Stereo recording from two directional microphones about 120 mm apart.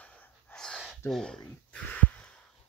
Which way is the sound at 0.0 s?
10° left (ahead or behind).